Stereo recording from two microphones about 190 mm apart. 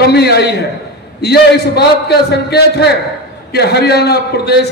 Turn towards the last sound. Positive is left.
turn(degrees=60)  # may be behind; listen again after turning